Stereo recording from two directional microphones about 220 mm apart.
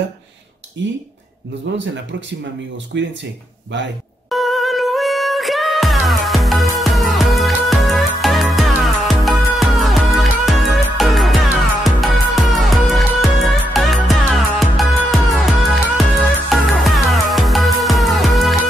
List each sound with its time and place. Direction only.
1.7 s speech: 55° right (ahead or behind)
2.9 s speech: 50° right (ahead or behind)
4.3 s music: centre (ahead or behind)